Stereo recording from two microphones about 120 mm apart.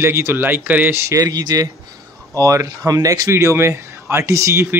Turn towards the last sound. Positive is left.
turn(degrees=-20)  # may be behind; listen again after turning